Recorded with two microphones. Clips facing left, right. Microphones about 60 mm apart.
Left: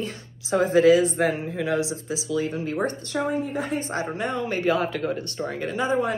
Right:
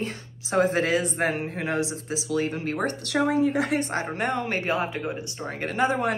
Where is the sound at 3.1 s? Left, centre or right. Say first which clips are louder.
Right 6 dB; right.